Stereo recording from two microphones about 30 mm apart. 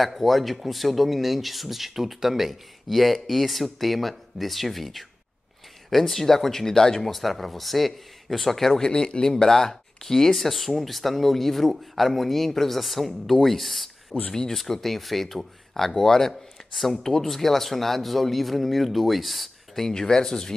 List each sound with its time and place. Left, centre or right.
0.0 s speech: centre
7.1 s speech: centre
8.8 s speech: left; by 14.3 s centre
14.5 s speech: centre
16.7 s speech: centre
19.9 s speech: centre